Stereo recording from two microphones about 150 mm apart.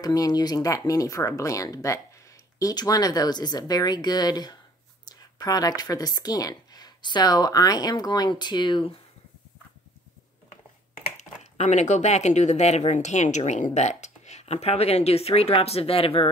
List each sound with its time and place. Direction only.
0.0 s speech: 25° left (ahead or behind)
11.1 s speech: 50° left (ahead or behind)